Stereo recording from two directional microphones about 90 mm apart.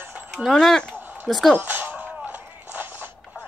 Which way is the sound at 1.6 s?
25° right (ahead or behind).